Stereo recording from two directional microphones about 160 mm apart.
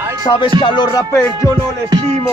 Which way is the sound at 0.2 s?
30° left (ahead or behind).